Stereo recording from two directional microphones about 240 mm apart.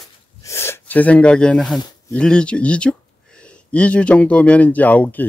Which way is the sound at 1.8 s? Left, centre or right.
Centre.